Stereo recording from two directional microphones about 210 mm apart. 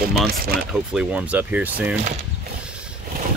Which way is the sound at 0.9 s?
5° right (ahead or behind).